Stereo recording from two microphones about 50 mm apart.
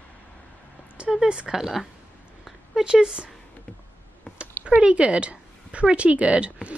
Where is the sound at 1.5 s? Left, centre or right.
Centre.